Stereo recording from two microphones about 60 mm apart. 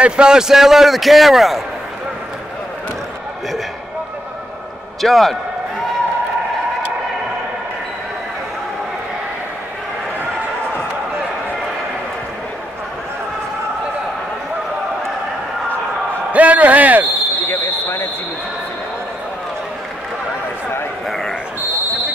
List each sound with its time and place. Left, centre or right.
0.0 s a man's voice: centre
5.0 s a man's voice: centre
16.3 s basketball bounce: right
17.5 s basketball bounce: left
21.1 s basketball bounce: centre